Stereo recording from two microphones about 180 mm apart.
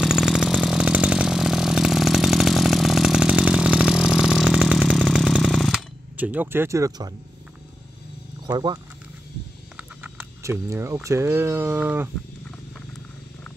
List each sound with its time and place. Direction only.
0.0 s vehicle: centre (ahead or behind)
8.5 s speech: 25° right (ahead or behind)
9.8 s speech: 10° right (ahead or behind)